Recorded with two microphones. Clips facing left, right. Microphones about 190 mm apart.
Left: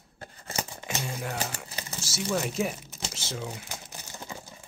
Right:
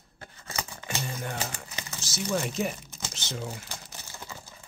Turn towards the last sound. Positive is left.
turn(degrees=0)  # may be behind; listen again after turning